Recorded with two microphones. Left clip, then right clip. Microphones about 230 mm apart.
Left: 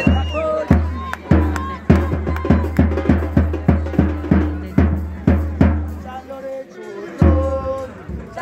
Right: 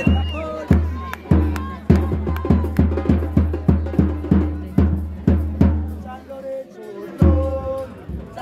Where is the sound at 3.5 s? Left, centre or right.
Left.